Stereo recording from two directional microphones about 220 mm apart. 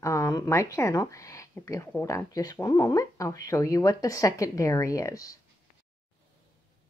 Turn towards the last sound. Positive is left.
turn(degrees=15)  # may be behind; listen again after turning